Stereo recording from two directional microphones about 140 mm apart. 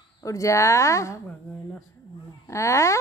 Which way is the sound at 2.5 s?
20° left (ahead or behind).